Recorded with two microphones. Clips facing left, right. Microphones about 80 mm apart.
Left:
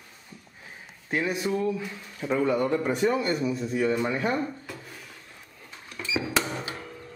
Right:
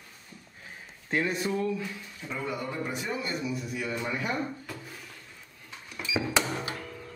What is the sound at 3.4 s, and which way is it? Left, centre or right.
Speech, left.